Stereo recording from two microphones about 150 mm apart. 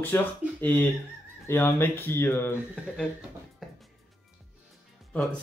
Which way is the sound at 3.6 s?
Centre (ahead or behind).